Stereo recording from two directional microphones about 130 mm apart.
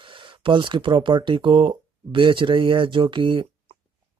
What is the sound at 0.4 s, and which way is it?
Speech, 40° right (ahead or behind).